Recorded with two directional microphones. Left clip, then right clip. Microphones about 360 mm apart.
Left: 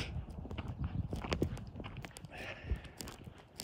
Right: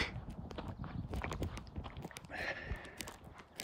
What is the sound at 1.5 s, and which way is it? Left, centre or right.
Walk, centre.